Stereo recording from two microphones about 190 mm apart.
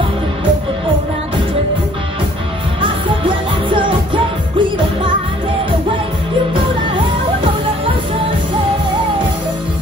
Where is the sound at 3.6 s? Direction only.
25° right (ahead or behind).